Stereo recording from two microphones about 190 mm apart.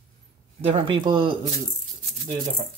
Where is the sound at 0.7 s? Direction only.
25° right (ahead or behind).